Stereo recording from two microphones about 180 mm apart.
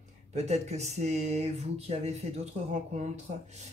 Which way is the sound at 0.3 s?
40° right (ahead or behind).